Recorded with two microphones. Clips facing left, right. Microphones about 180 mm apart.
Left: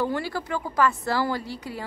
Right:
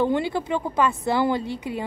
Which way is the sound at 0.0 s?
20° right (ahead or behind).